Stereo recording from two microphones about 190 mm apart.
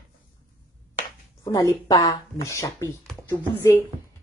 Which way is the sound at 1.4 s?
20° left (ahead or behind).